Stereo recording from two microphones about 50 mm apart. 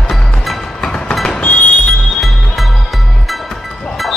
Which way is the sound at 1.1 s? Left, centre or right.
Centre.